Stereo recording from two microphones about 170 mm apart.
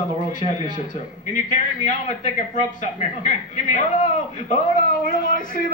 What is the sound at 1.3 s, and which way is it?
A man's voice, 45° left (ahead or behind).